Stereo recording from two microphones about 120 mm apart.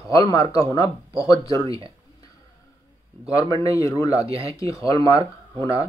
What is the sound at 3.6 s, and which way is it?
Speech, 30° left (ahead or behind).